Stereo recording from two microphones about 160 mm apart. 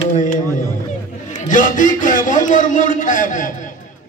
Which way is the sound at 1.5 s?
55° left (ahead or behind).